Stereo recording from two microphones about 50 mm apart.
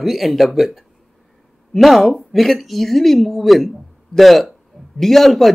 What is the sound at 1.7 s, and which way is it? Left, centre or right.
Speech, centre.